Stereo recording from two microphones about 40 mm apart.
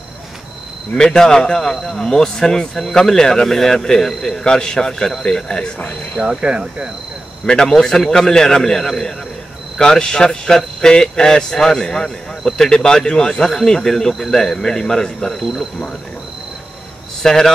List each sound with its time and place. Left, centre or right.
1.1 s speech: centre
6.1 s speech: centre
7.4 s speech: centre
15.2 s speech: centre
17.2 s a man's voice: centre